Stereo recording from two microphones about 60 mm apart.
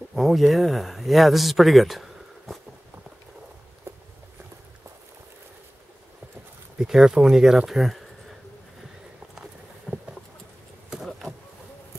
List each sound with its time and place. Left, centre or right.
0.1 s speech: centre
3.9 s walk: right
6.8 s speech: centre
9.9 s a sound: left